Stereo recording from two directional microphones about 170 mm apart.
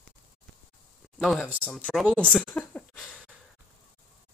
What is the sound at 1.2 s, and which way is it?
Speech, centre (ahead or behind).